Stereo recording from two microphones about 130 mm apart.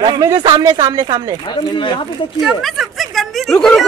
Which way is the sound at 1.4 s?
35° left (ahead or behind).